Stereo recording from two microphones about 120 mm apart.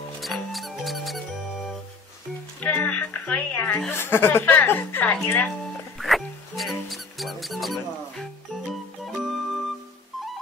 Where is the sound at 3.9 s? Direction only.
20° left (ahead or behind).